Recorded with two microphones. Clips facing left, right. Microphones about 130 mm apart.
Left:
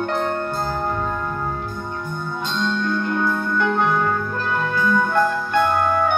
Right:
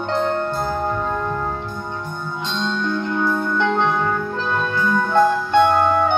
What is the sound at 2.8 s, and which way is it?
Music, 20° right (ahead or behind).